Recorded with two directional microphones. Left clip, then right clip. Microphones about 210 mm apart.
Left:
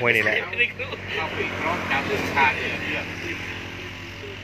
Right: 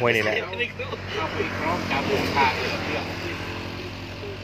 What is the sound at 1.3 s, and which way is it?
Speech, 40° left (ahead or behind).